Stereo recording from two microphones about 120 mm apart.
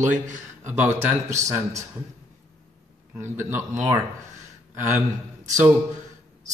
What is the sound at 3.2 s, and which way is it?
Speech, 20° right (ahead or behind).